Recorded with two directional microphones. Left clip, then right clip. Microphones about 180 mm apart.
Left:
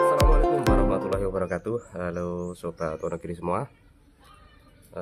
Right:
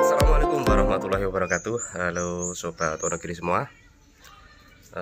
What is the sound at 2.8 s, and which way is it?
Speech, 5° left (ahead or behind).